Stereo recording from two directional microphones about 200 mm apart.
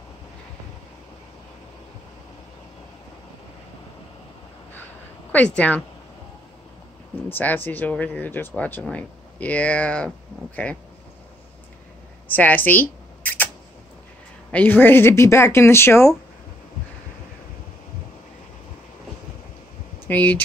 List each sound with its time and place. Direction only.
5.6 s speech: 5° left (ahead or behind)
7.2 s speech: 10° left (ahead or behind)
12.3 s camera: 10° left (ahead or behind)
14.5 s speech: 10° left (ahead or behind)
20.1 s speech: 10° left (ahead or behind)